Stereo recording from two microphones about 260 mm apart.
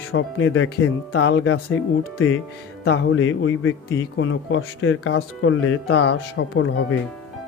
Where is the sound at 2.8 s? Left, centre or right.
Left.